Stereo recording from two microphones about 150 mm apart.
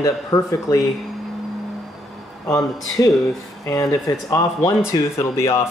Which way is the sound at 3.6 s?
20° left (ahead or behind).